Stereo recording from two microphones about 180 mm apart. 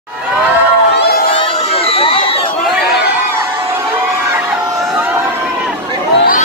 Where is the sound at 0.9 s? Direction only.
60° left (ahead or behind).